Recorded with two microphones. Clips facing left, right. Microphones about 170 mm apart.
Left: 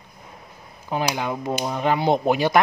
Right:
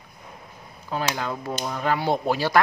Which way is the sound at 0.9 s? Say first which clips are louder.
Left 3 dB; 15° left (ahead or behind).